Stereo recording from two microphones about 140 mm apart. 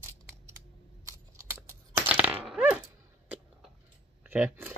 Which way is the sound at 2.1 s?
10° right (ahead or behind).